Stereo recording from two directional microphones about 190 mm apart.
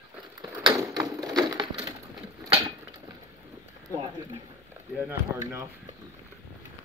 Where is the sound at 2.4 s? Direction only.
20° right (ahead or behind).